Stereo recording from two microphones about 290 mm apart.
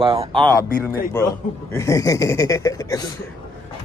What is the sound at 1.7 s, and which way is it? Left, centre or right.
A man's voice, centre.